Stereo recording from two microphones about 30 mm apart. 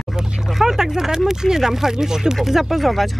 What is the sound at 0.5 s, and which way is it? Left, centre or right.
Speech, centre.